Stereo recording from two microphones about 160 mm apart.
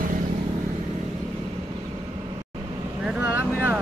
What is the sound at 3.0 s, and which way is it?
Vehicle, 10° right (ahead or behind).